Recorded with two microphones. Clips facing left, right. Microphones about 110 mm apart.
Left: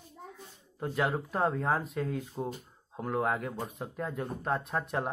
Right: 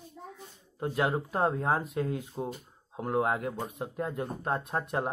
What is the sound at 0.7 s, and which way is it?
Speech, 5° right (ahead or behind).